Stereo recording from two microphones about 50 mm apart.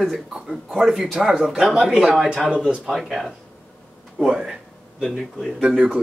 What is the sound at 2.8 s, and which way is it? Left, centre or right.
Speech, centre.